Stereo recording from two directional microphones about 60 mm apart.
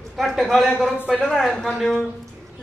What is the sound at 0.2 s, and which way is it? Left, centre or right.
A woman's voice, centre.